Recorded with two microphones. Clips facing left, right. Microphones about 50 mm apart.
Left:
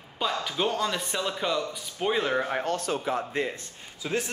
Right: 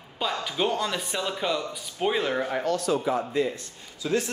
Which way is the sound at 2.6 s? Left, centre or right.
Left.